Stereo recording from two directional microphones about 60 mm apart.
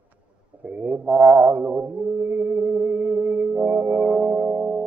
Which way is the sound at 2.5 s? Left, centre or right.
Centre.